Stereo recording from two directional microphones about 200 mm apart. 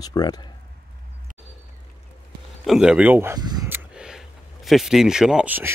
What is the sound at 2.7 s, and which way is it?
Speech, 5° right (ahead or behind).